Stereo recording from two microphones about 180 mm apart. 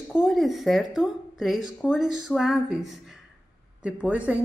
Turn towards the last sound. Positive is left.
turn(degrees=-10)  # may be behind; listen again after turning